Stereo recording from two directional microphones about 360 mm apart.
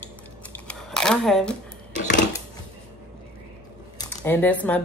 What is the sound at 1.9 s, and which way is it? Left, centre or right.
Dishes, left.